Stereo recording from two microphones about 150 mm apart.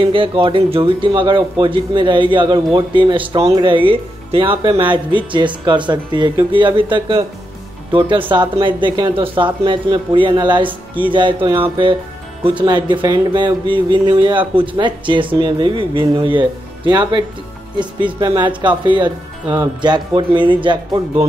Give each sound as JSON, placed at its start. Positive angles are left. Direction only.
{"t": 0.0, "sound": "speech", "side_deg": -35}